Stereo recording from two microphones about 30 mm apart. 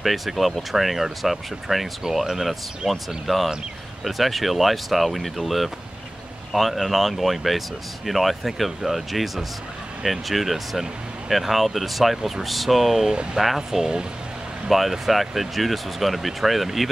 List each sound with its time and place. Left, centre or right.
0.0 s speech: centre
2.9 s speech: centre
13.1 s speech: right
13.6 s speech: centre
14.7 s speech: centre